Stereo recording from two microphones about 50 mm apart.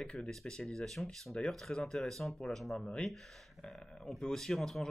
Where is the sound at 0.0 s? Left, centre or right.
Left.